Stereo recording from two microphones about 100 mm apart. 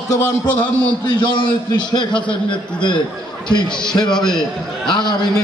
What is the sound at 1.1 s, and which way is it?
A man's voice, 50° left (ahead or behind).